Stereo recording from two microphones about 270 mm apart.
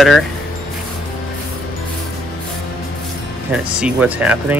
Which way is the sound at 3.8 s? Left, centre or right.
Centre.